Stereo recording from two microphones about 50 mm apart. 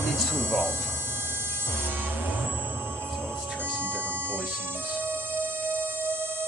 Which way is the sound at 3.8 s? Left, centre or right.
Left.